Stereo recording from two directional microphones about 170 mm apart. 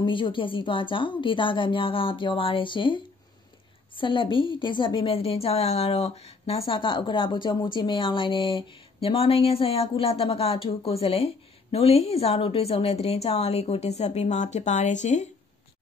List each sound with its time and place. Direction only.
0.0 s a woman's voice: 30° left (ahead or behind); by 15.2 s 45° left (ahead or behind)